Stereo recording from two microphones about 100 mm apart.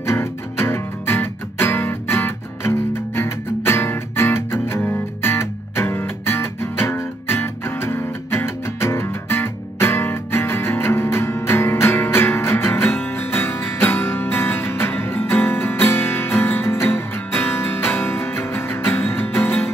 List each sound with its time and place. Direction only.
0.0 s music: 25° left (ahead or behind)